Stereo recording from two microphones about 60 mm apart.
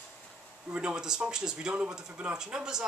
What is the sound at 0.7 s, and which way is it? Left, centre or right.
Speech, centre.